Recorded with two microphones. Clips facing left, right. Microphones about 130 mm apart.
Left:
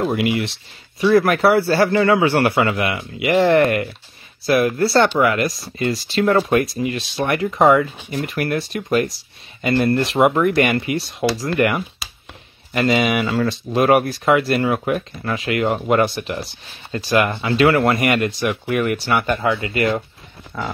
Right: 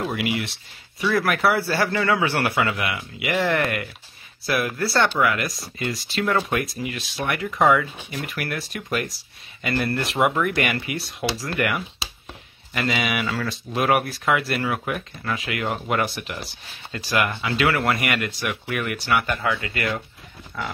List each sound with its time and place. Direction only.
0.0 s speech: 30° left (ahead or behind)